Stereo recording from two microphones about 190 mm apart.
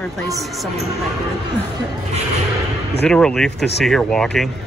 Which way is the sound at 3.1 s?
5° left (ahead or behind).